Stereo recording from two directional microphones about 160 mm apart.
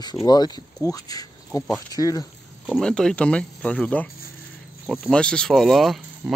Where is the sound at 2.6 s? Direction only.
5° left (ahead or behind).